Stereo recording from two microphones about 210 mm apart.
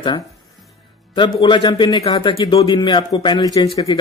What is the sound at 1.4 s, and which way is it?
Speech, 20° left (ahead or behind).